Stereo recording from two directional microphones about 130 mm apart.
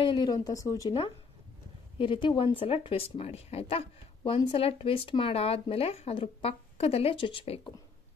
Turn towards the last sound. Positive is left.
turn(degrees=45)  # may be behind; listen again after turning